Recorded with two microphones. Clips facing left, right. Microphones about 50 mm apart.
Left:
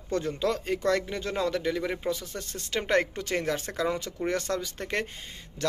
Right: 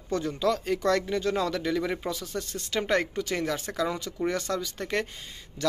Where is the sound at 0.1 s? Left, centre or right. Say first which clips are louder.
Right 1 dB; left; by 2.1 s centre.